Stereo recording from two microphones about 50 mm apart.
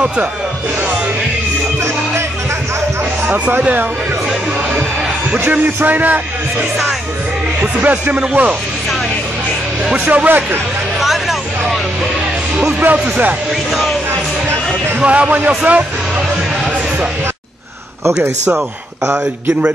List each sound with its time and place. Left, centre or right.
5.4 s a man's voice: right
7.6 s speech: right
9.9 s a man's voice: right
11.0 s hubbub: centre
12.9 s a man's voice: right
15.0 s a man's voice: right